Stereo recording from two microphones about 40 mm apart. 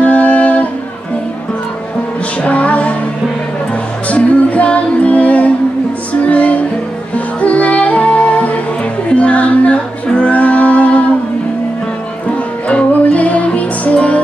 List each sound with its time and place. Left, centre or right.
0.0 s music: left
2.4 s music: left
4.1 s music: left
12.6 s music: left